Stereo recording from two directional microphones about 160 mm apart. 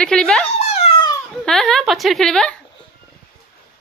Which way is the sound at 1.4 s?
5° left (ahead or behind).